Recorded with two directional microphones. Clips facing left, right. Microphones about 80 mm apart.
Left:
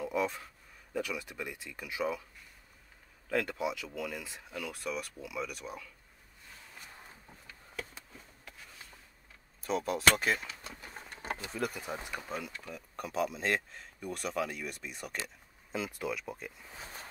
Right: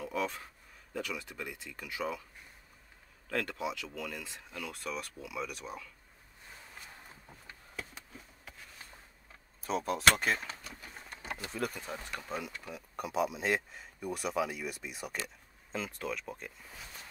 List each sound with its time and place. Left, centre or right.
0.0 s a sound: centre
0.9 s speech: centre
3.3 s speech: centre
9.6 s speech: centre
10.6 s speech: left
11.1 s pigeon: left
11.5 s speech: centre
11.8 s speech: centre
12.3 s speech: centre
15.2 s speech: centre
16.7 s speech: left